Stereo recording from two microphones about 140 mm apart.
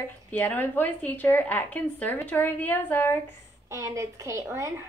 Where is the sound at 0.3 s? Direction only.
10° left (ahead or behind).